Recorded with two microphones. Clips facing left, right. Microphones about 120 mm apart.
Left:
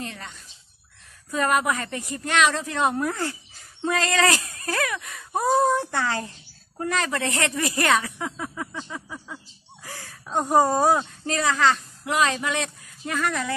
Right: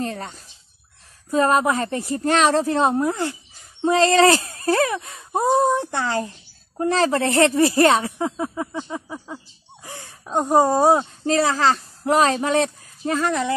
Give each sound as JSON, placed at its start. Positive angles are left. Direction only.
{"t": 0.0, "sound": "speech", "side_deg": -40}